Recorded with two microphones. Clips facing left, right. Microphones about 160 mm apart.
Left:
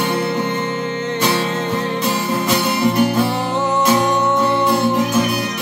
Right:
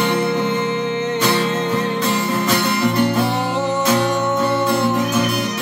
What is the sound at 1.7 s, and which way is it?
Music, 10° left (ahead or behind).